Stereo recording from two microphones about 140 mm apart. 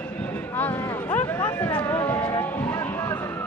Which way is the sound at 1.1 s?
20° left (ahead or behind).